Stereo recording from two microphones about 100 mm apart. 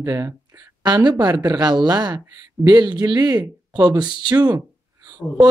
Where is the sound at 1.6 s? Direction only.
45° right (ahead or behind).